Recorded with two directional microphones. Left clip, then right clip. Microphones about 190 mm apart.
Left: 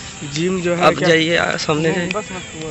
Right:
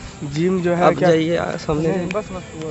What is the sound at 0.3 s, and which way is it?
Speech, 65° right (ahead or behind).